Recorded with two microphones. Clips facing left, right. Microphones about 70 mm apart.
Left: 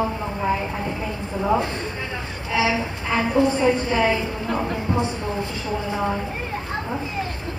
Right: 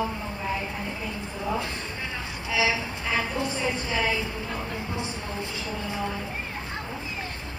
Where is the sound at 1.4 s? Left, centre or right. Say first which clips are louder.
Left 9 dB; left.